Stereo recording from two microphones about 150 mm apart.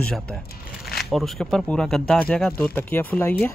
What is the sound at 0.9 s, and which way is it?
Speech, centre (ahead or behind).